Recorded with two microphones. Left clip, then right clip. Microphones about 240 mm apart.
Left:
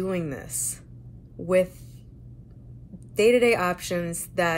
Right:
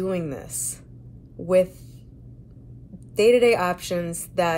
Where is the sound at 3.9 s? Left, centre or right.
Centre.